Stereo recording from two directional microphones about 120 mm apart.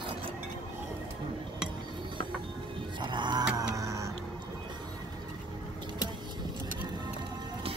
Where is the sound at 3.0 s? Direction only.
40° right (ahead or behind).